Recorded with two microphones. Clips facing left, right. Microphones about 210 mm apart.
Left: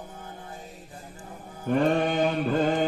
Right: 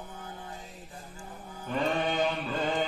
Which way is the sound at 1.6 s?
50° left (ahead or behind).